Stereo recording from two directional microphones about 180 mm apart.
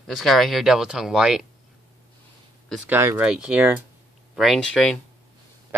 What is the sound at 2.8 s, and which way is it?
Speech, 10° right (ahead or behind).